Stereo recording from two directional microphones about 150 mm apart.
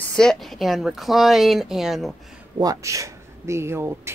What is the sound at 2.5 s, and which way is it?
Speech, 25° right (ahead or behind).